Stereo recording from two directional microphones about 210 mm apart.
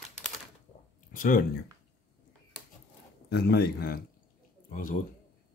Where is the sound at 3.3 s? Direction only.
50° left (ahead or behind).